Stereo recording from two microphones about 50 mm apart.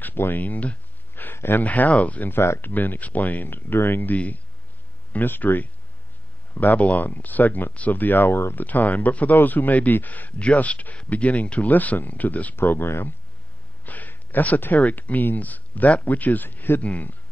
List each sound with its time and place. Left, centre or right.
0.0 s speech: left
1.1 s a sound: left
1.6 s speech: left
2.2 s speech: left
2.6 s speech: left
8.5 s speech: left
12.5 s speech: left
13.8 s speech: left
16.8 s speech: left